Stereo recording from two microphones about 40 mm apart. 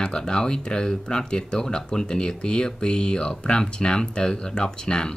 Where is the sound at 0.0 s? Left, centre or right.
Left.